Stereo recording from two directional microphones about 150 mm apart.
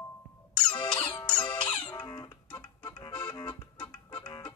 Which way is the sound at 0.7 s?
30° left (ahead or behind).